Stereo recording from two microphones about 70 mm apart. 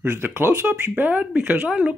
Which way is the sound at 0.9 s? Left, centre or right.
Right.